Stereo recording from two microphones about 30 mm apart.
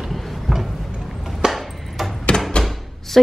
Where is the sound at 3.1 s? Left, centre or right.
Centre.